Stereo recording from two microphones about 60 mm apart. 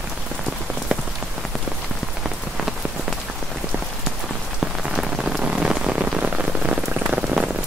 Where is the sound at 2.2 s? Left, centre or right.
Centre.